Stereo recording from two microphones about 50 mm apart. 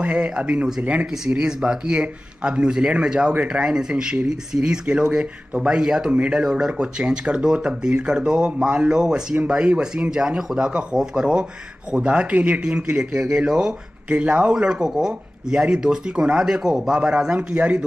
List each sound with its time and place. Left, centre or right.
0.0 s speech: right
6.1 s speech: right
14.0 s speech: right
14.5 s speech: centre